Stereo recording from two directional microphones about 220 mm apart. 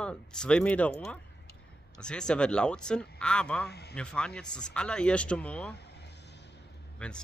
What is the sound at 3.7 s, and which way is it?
Speech, 45° left (ahead or behind).